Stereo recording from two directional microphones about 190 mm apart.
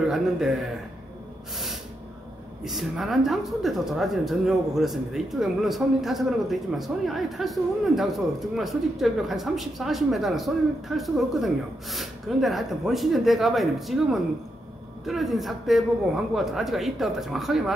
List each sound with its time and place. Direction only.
0.1 s speech: centre (ahead or behind)
2.6 s speech: centre (ahead or behind)